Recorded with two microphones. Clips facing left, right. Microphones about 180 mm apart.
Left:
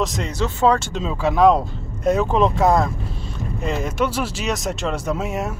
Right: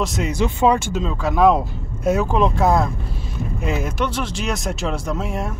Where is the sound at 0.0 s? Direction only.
5° right (ahead or behind).